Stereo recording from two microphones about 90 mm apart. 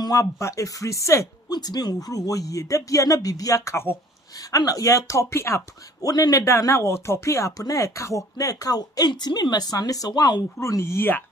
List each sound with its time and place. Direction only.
0.0 s speech: 40° left (ahead or behind)
1.5 s speech: 50° left (ahead or behind); by 5.6 s 30° left (ahead or behind)
6.0 s speech: 45° left (ahead or behind)
10.6 s speech: 30° left (ahead or behind)